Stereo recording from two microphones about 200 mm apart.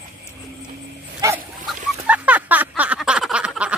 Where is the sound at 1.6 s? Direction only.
5° right (ahead or behind).